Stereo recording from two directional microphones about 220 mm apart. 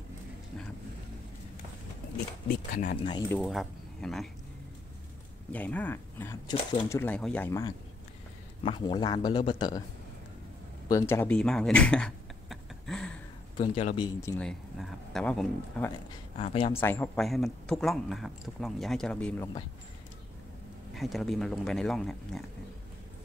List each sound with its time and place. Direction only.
2.4 s speech: 40° left (ahead or behind)
3.0 s speech: 20° left (ahead or behind)
3.3 s speech: 5° left (ahead or behind)
5.5 s speech: 5° left (ahead or behind)
8.6 s speech: 20° left (ahead or behind)
10.9 s speech: 10° left (ahead or behind)
13.6 s speech: 30° left (ahead or behind)
14.4 s speech: centre (ahead or behind)
16.3 s speech: 25° left (ahead or behind)
16.8 s speech: 10° left (ahead or behind)
20.9 s speech: centre (ahead or behind)